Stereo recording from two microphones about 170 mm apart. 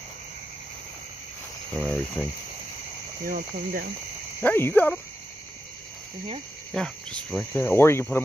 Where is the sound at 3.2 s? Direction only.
55° right (ahead or behind).